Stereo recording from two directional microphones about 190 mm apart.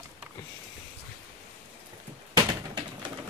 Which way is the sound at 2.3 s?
20° right (ahead or behind).